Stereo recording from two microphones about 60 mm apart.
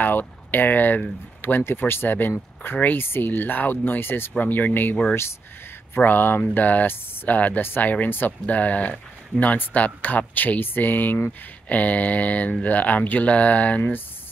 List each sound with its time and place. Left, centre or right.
0.0 s speech: left
4.4 s speech: left
5.9 s speech: left